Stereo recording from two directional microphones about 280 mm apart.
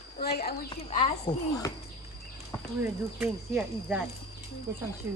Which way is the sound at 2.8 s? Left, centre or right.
Centre.